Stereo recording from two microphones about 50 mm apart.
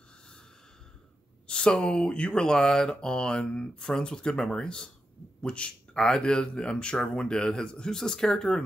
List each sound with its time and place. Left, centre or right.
1.5 s speech: centre